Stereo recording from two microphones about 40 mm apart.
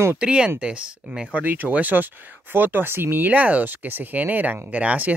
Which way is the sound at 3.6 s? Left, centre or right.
Right.